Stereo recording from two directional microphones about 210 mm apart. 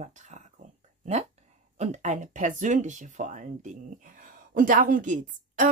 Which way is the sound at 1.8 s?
35° right (ahead or behind).